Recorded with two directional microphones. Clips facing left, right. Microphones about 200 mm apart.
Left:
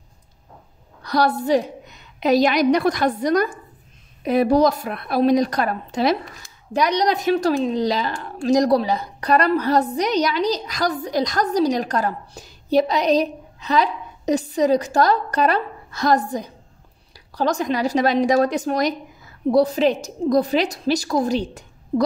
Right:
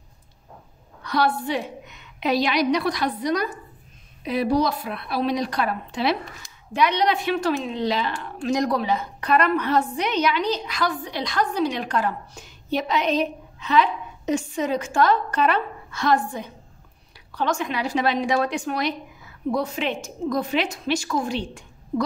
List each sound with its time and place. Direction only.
1.0 s a woman's voice: 40° left (ahead or behind)